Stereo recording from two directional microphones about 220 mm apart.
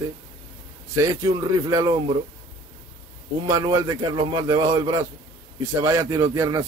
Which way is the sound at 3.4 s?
15° right (ahead or behind).